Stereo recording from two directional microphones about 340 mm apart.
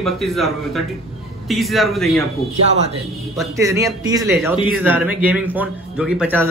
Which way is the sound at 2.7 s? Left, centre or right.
Centre.